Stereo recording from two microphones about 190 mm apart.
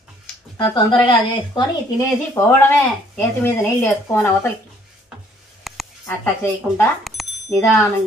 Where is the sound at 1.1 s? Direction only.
20° left (ahead or behind).